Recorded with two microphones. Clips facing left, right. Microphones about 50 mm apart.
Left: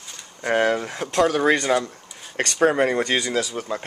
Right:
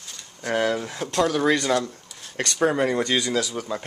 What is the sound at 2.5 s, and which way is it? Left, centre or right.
Speech, left.